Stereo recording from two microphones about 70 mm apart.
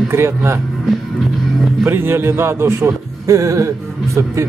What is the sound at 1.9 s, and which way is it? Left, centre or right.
Speech, right.